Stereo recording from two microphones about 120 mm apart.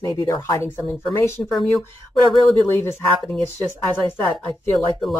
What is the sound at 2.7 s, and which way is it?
A woman's voice, 20° left (ahead or behind).